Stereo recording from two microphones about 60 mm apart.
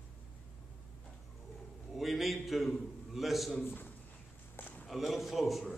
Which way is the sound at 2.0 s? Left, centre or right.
Centre.